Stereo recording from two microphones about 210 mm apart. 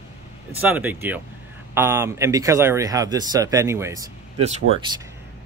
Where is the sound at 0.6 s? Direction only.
10° right (ahead or behind).